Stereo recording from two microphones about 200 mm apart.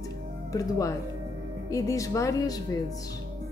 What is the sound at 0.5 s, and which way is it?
Speech, 15° left (ahead or behind).